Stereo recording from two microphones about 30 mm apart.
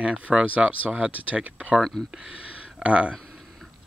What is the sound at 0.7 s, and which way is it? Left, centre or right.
Speech, right.